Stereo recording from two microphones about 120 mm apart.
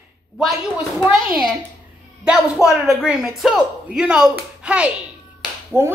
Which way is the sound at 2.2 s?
5° right (ahead or behind).